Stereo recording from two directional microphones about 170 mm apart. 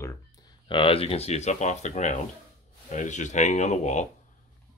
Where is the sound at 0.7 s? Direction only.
30° left (ahead or behind).